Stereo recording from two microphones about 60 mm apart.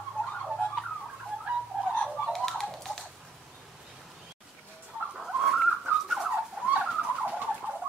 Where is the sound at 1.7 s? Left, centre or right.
Centre.